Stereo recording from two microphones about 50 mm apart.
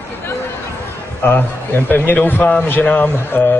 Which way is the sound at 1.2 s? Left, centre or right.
Left.